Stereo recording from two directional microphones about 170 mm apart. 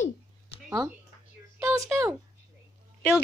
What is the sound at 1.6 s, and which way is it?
Speech, 15° right (ahead or behind).